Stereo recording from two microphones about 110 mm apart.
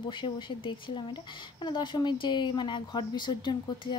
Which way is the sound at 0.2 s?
50° left (ahead or behind).